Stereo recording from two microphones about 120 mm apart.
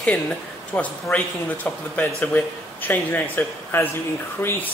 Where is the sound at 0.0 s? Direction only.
5° left (ahead or behind).